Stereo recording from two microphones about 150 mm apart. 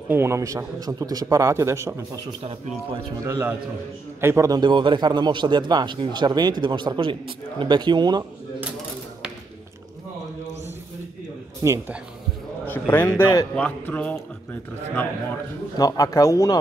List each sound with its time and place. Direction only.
0.1 s a man's voice: 15° right (ahead or behind)
3.3 s a man's voice: 15° right (ahead or behind)
11.6 s a man's voice: 20° right (ahead or behind)
12.6 s a man's voice: 15° left (ahead or behind)
13.6 s a man's voice: 10° left (ahead or behind)
15.8 s a man's voice: 20° left (ahead or behind)